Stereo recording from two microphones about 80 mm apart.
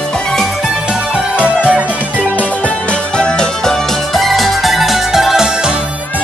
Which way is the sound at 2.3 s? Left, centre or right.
Centre.